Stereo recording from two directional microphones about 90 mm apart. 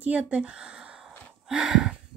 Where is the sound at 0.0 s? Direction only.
15° right (ahead or behind).